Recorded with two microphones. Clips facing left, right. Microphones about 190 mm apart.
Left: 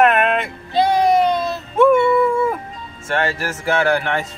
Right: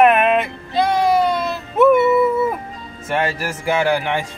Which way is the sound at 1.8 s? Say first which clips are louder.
Right 1 dB; 5° right (ahead or behind).